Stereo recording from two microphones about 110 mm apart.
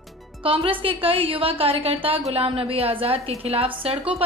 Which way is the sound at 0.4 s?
55° right (ahead or behind).